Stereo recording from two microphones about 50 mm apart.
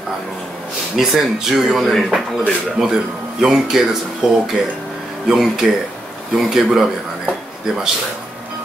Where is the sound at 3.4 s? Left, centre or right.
Centre.